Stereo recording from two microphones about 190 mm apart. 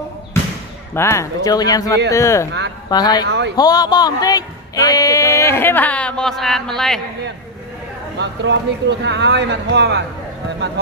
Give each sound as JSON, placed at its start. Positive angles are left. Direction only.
{"t": 0.9, "sound": "a man's voice", "side_deg": 15}
{"t": 3.3, "sound": "speech", "side_deg": -65}
{"t": 3.5, "sound": "speech", "side_deg": 20}
{"t": 8.2, "sound": "speech", "side_deg": -65}